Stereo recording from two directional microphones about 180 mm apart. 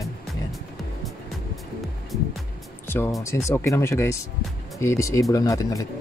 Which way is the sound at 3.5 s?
15° left (ahead or behind).